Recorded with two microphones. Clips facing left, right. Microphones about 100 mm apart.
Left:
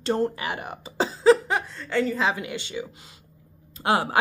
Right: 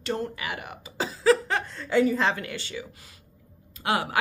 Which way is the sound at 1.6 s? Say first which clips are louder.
Right 3 dB; centre (ahead or behind).